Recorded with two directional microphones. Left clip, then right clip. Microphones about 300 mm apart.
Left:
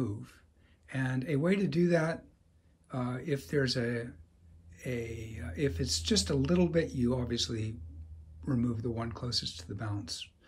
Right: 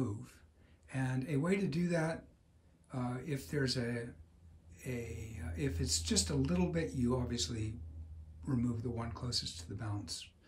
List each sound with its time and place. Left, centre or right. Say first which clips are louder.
0.0 s speech: left 3 dB; centre